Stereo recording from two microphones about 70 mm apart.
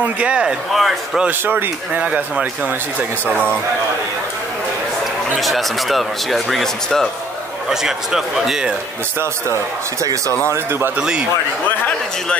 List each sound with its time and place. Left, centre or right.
0.0 s speech: centre
0.7 s speech: centre
1.4 s speech: right
5.4 s speech: centre
7.7 s speech: centre
10.5 s a man's voice: right
11.0 s speech: centre